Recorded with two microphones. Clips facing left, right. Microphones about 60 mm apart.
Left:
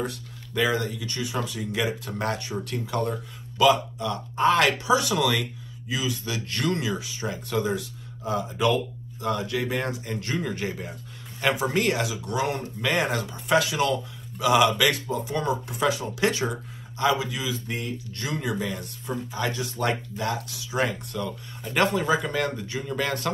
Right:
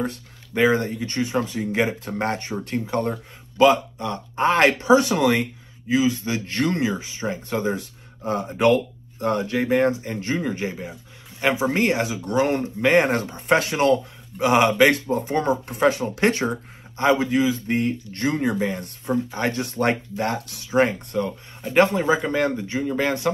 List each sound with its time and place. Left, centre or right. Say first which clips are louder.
0.0 s speech: right 3 dB; right
8.3 s speech: right 5 dB; right
9.6 s speech: right 8 dB; right
18.6 s speech: right 5 dB; right
19.0 s speech: right 6 dB; right